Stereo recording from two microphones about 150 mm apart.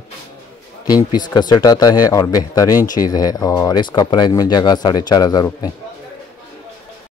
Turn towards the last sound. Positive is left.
turn(degrees=25)  # may be behind; listen again after turning